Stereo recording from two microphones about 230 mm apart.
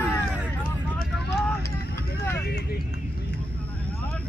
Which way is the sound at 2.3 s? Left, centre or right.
Left.